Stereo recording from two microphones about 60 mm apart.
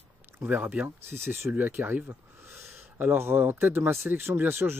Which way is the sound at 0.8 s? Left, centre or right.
Right.